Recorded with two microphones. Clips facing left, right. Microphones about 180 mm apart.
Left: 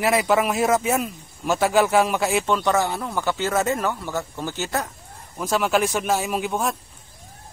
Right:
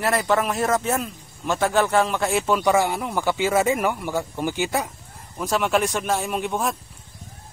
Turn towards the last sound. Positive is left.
turn(degrees=0)  # may be behind; listen again after turning